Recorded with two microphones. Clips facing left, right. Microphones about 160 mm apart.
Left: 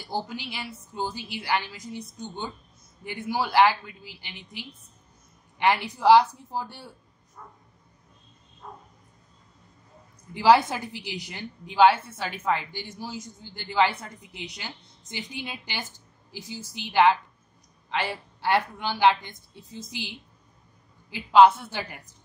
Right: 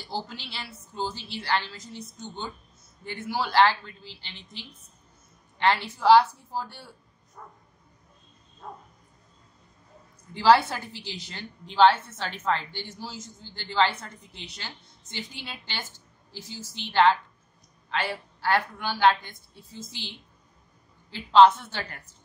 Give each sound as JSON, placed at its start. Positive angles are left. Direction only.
{"t": 0.0, "sound": "a woman's voice", "side_deg": 15}
{"t": 7.4, "sound": "bow-wow", "side_deg": -50}
{"t": 10.3, "sound": "a woman's voice", "side_deg": 15}